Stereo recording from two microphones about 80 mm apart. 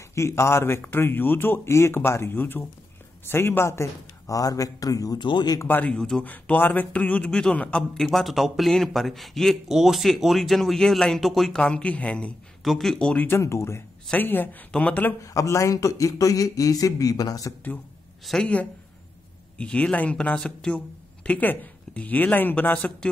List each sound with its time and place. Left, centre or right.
0.1 s a man's voice: left
4.4 s speech: left
5.2 s speech: left
5.7 s speech: left
5.9 s speech: centre
6.2 s speech: left
8.0 s speech: centre
12.6 s speech: centre
13.4 s a man's voice: left; by 15.1 s centre
15.2 s speech: left
18.2 s speech: centre
19.6 s speech: centre